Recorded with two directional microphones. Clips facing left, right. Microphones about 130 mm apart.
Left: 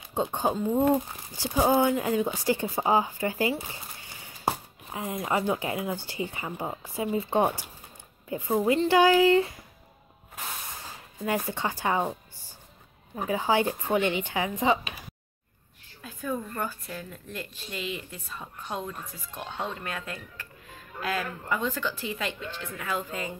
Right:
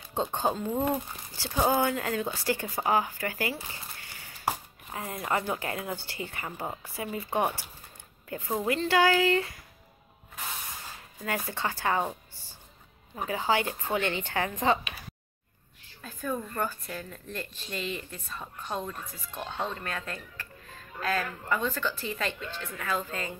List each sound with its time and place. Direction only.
0.1 s speech: 10° left (ahead or behind)
11.2 s speech: 15° left (ahead or behind)
16.0 s speech: 10° left (ahead or behind)